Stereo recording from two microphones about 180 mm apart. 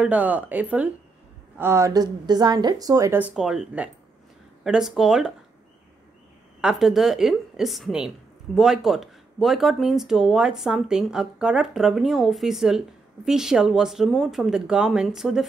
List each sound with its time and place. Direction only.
0.0 s speech: 5° right (ahead or behind)
6.6 s speech: centre (ahead or behind)